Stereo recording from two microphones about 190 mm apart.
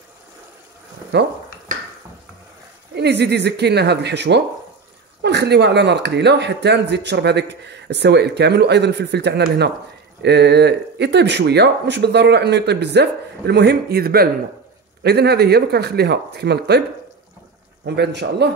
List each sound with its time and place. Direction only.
1.1 s speech: 60° right (ahead or behind)
2.9 s speech: 60° right (ahead or behind)
17.8 s speech: 65° right (ahead or behind)